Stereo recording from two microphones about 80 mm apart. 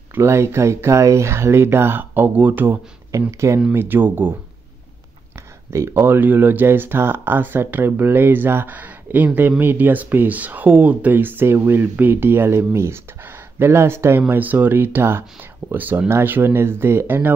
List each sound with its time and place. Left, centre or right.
0.1 s speech: right
3.1 s speech: right
3.7 s speech: right
5.7 s speech: right
5.9 s speech: right